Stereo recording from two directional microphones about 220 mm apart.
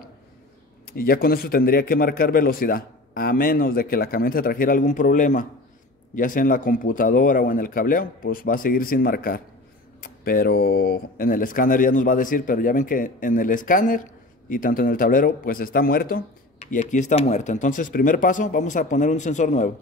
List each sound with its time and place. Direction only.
0.8 s a man's voice: 45° left (ahead or behind)